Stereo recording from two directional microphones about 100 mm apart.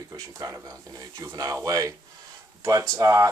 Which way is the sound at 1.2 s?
35° right (ahead or behind).